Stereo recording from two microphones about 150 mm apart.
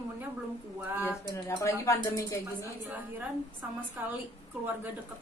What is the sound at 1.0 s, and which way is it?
Speech, 20° left (ahead or behind).